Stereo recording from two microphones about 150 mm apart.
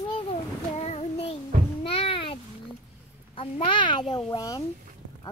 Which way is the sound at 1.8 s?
40° left (ahead or behind).